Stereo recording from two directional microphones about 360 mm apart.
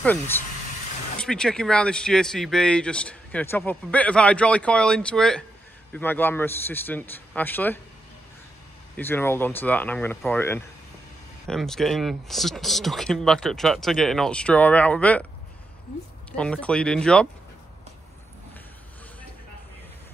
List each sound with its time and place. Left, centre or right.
0.0 s speech: centre
8.9 s speech: centre
16.3 s speech: centre